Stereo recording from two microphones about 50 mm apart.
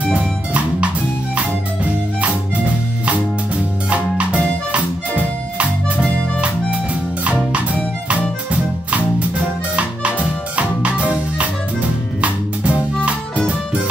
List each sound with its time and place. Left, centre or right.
3.9 s music: right
9.8 s music: right